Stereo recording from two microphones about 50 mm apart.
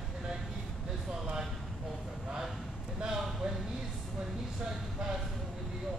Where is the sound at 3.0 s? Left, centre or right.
Centre.